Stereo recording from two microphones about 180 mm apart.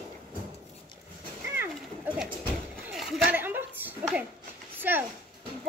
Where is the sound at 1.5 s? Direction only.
10° right (ahead or behind).